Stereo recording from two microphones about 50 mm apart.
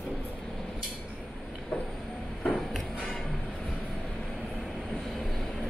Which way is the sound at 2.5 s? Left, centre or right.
Centre.